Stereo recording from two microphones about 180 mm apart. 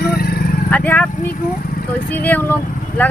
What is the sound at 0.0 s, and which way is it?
Vehicle, 60° left (ahead or behind).